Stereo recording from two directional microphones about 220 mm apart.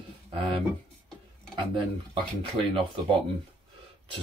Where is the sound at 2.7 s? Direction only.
25° right (ahead or behind).